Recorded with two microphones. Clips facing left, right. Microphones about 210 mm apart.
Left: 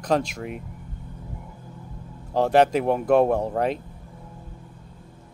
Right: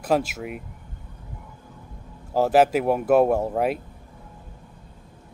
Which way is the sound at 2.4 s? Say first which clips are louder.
Even; 5° right (ahead or behind).